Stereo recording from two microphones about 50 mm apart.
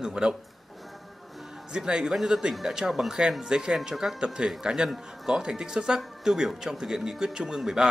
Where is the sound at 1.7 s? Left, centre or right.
Centre.